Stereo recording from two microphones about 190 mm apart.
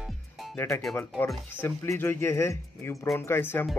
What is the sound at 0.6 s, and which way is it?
Speech, 15° left (ahead or behind).